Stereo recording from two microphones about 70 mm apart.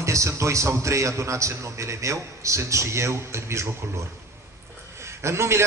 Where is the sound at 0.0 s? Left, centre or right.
Right.